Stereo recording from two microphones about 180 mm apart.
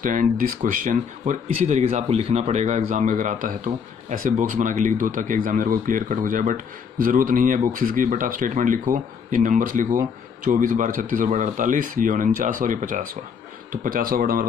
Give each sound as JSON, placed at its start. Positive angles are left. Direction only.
{"t": 0.0, "sound": "speech", "side_deg": -50}